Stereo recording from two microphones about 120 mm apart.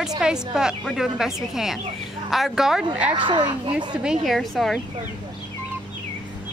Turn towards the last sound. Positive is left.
turn(degrees=0)  # may be behind; listen again after turning